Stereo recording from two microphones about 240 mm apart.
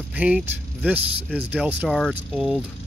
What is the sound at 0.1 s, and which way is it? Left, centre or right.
Speech, centre.